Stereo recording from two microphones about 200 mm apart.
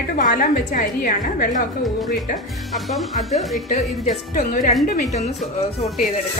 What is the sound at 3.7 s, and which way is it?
Speech, 40° left (ahead or behind).